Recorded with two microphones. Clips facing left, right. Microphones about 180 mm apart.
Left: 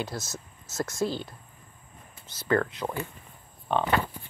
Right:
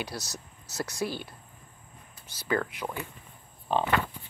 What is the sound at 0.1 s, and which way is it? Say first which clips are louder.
Speech: left 2 dB; 20° left (ahead or behind).